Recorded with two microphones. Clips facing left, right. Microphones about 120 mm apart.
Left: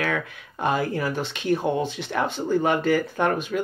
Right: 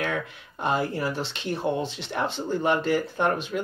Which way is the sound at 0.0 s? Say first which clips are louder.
Left 2 dB; 55° left (ahead or behind).